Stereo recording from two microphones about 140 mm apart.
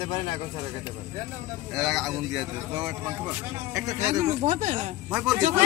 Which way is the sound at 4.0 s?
55° right (ahead or behind).